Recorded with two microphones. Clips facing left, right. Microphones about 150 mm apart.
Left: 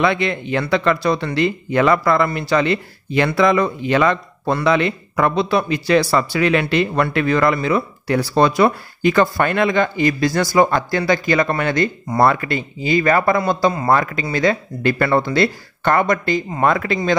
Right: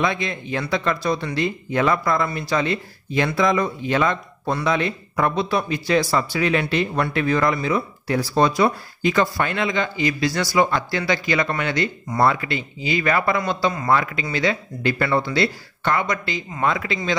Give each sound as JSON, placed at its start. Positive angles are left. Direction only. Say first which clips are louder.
{"t": 0.0, "sound": "speech", "louder": "left 5 dB", "side_deg": 70}